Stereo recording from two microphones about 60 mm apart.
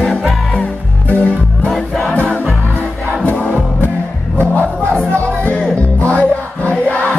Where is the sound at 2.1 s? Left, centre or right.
Left.